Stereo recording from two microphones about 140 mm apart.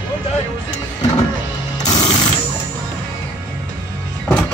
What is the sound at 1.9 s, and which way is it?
Mechanisms, 30° left (ahead or behind).